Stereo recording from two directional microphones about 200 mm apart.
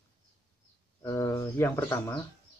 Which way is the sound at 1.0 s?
15° left (ahead or behind).